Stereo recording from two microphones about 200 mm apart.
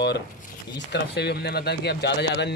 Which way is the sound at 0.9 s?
55° left (ahead or behind).